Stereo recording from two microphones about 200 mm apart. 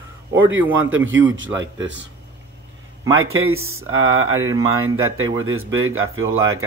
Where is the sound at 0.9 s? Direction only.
75° right (ahead or behind).